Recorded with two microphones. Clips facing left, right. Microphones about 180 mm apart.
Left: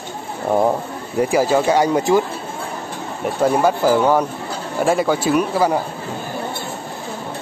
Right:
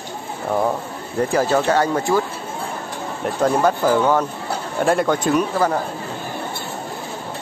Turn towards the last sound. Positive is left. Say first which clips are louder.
# left 1 dB
turn(degrees=10)  # may be behind; listen again after turning